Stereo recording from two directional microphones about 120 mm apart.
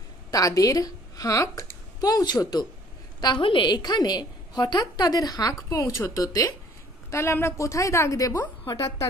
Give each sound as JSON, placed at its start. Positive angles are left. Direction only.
{"t": 0.3, "sound": "a woman's voice", "side_deg": 30}